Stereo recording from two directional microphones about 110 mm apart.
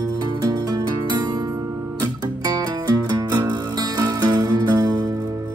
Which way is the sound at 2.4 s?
35° right (ahead or behind).